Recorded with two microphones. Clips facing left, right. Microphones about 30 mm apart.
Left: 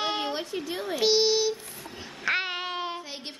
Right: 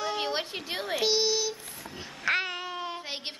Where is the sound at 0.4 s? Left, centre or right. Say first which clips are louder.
Left 1 dB; right.